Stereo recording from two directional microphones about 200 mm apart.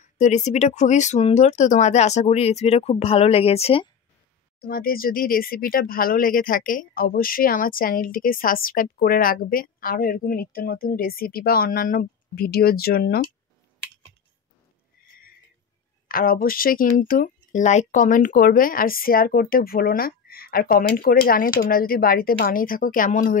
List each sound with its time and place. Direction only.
0.0 s speech: 35° left (ahead or behind)
4.6 s speech: 45° left (ahead or behind)
15.0 s a sound: 45° left (ahead or behind)
16.1 s speech: 45° left (ahead or behind)